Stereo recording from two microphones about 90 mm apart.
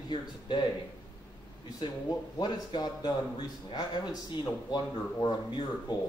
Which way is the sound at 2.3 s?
50° left (ahead or behind).